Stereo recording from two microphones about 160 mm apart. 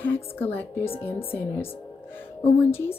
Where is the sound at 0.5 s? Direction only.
15° left (ahead or behind).